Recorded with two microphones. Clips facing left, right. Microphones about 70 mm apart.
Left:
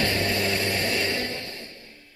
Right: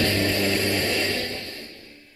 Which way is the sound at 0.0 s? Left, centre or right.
Left.